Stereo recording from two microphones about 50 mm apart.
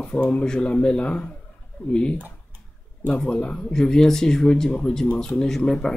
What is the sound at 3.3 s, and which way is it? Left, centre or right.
Speech, left.